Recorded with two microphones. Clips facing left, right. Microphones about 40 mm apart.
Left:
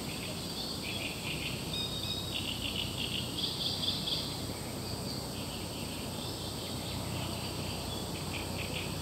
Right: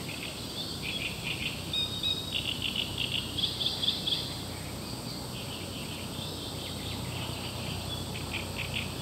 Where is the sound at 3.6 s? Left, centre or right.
Right.